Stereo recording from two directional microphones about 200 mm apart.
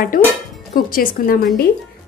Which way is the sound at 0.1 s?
45° left (ahead or behind).